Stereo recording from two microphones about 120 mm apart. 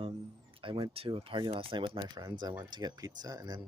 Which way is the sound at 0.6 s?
45° right (ahead or behind).